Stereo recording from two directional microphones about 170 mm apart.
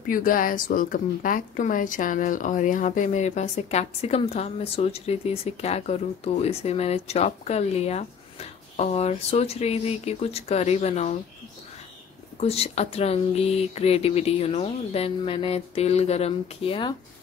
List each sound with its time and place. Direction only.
0.1 s speech: 55° left (ahead or behind)
12.4 s speech: 35° left (ahead or behind)